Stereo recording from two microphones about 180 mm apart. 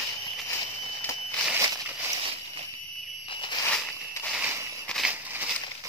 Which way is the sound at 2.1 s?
30° right (ahead or behind).